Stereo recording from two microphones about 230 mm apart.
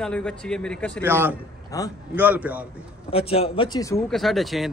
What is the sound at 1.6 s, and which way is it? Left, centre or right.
Speech, centre.